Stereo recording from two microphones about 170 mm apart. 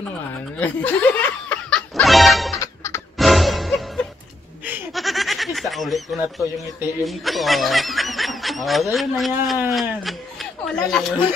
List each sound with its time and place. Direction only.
0.6 s music: 10° left (ahead or behind)
2.5 s music: 20° left (ahead or behind)
3.2 s music: centre (ahead or behind)
4.9 s goat: centre (ahead or behind)
7.1 s speech: centre (ahead or behind)
9.7 s a sound: centre (ahead or behind)
10.9 s speech: centre (ahead or behind)